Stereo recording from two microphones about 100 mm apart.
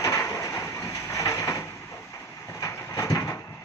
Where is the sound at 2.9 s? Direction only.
30° left (ahead or behind).